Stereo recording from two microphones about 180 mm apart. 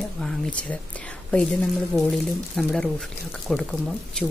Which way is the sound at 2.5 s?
5° left (ahead or behind).